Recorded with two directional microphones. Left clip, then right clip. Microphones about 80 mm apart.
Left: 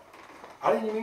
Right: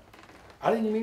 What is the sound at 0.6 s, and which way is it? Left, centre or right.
Speech, centre.